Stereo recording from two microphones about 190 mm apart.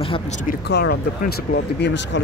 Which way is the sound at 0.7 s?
55° left (ahead or behind).